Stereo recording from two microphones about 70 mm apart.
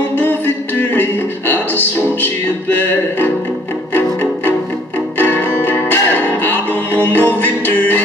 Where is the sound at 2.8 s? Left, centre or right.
Left.